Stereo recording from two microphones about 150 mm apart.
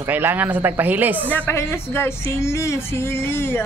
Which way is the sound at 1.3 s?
15° left (ahead or behind).